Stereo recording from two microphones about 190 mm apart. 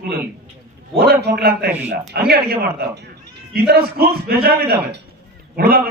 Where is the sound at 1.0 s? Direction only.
55° right (ahead or behind).